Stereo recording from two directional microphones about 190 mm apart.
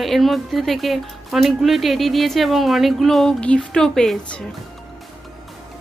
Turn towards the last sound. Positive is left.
turn(degrees=5)  # may be behind; listen again after turning